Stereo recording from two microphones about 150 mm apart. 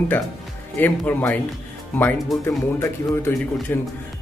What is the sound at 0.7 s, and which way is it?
Speech, 10° left (ahead or behind).